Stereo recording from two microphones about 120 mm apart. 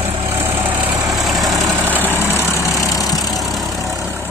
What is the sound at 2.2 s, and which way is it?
Vehicle, 20° left (ahead or behind).